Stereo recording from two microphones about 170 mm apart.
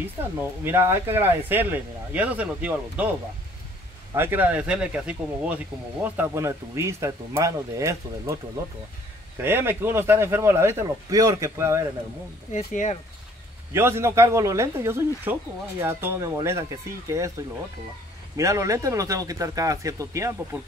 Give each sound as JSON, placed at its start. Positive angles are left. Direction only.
{"t": 0.7, "sound": "speech", "side_deg": -15}
{"t": 4.1, "sound": "speech", "side_deg": -10}
{"t": 9.4, "sound": "speech", "side_deg": -15}
{"t": 12.5, "sound": "speech", "side_deg": 45}
{"t": 13.7, "sound": "a man's voice", "side_deg": -15}